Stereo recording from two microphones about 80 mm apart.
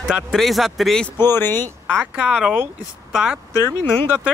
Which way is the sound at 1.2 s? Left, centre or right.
Left.